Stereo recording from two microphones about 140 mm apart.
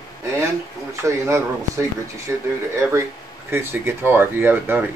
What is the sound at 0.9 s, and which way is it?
A man's voice, 20° right (ahead or behind).